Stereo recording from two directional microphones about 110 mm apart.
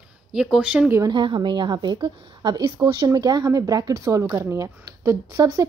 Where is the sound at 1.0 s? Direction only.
45° right (ahead or behind).